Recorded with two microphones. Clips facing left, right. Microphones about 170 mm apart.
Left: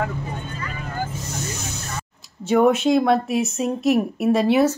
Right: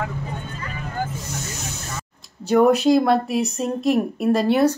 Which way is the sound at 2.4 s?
Centre (ahead or behind).